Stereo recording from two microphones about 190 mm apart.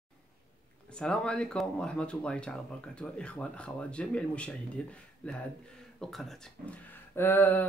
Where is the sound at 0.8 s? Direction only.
5° left (ahead or behind).